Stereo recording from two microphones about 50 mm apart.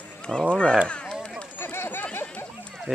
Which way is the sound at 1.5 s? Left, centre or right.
Left.